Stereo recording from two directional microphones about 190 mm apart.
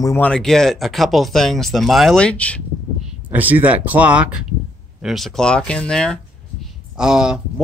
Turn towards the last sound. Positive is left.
turn(degrees=-5)  # may be behind; listen again after turning